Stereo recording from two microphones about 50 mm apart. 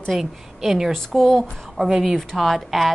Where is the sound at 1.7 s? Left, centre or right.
Centre.